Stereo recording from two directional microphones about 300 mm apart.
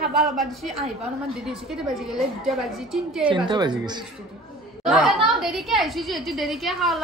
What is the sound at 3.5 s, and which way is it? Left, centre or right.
Speech, centre.